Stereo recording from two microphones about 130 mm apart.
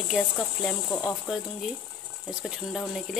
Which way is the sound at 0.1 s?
5° left (ahead or behind).